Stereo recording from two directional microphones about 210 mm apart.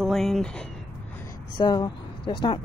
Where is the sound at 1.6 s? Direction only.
20° left (ahead or behind).